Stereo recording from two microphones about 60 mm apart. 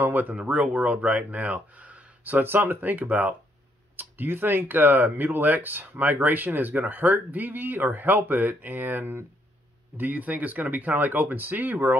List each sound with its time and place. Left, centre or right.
0.0 s speech: right